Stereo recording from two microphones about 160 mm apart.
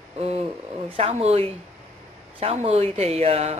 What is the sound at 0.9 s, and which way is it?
A woman's voice, 40° right (ahead or behind).